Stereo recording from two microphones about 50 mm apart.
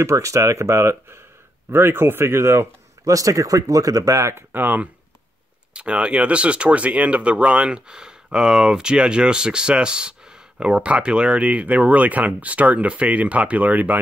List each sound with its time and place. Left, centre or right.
0.0 s speech: right
1.7 s speech: right
4.4 s speech: right
5.7 s speech: right